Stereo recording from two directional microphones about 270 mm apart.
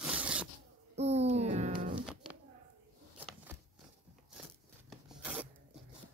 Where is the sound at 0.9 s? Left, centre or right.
Right.